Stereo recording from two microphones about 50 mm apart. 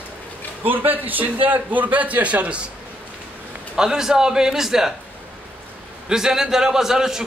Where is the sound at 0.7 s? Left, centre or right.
Right.